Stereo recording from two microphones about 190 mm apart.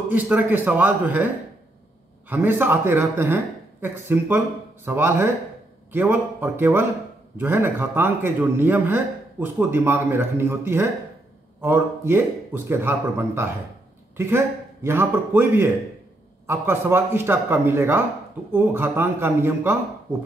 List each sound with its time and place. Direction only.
0.1 s a man's voice: 10° right (ahead or behind)